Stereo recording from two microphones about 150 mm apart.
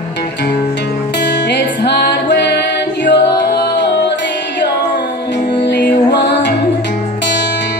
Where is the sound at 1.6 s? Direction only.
90° left.